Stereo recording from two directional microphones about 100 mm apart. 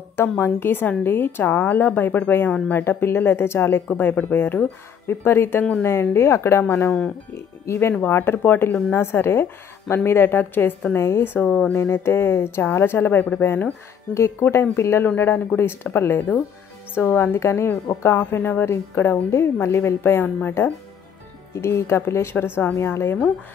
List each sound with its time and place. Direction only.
0.1 s speech: 20° left (ahead or behind)
11.8 s speech: 25° left (ahead or behind)